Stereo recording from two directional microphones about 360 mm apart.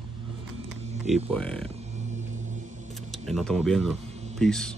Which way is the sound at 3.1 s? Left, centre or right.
Centre.